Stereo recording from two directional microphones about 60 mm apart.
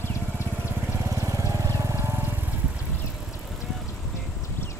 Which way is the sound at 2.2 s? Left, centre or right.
Right.